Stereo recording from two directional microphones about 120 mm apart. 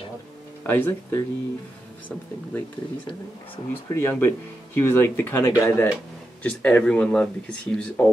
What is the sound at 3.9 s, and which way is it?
Speech, 20° left (ahead or behind).